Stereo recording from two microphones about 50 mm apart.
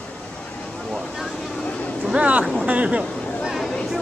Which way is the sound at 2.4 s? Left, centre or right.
Centre.